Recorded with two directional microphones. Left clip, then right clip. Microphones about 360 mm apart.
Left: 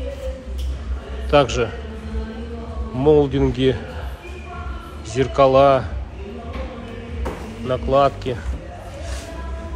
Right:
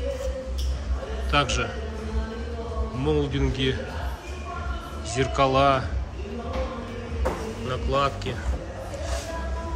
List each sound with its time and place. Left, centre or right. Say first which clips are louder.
1.3 s speech: left 8 dB; centre
3.0 s speech: left 11 dB; centre
5.1 s speech: left 7 dB; centre
7.6 s speech: left 9 dB; centre